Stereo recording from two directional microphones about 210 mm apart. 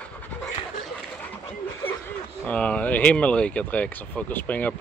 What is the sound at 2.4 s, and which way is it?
Speech, 5° left (ahead or behind).